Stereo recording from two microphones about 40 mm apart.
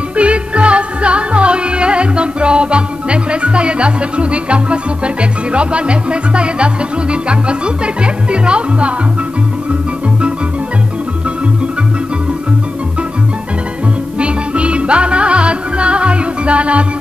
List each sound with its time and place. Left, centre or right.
0.1 s music: right
14.2 s music: right